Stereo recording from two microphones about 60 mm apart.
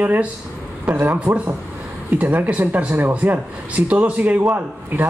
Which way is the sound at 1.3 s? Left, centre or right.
Right.